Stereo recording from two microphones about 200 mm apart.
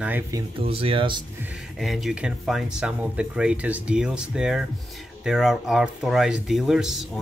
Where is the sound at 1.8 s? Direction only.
Centre (ahead or behind).